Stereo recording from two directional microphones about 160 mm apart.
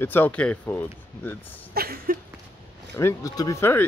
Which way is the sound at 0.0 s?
10° left (ahead or behind).